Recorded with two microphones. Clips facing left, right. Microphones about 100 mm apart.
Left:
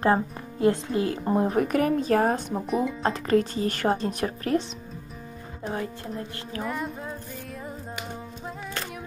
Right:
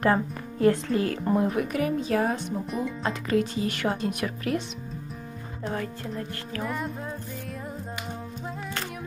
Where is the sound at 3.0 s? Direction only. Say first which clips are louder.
Left 1 dB; 40° left (ahead or behind).